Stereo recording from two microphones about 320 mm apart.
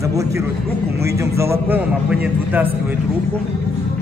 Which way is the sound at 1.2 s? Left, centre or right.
Centre.